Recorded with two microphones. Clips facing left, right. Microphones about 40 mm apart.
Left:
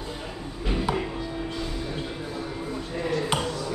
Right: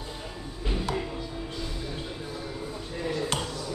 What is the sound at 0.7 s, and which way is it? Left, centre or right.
Music, left.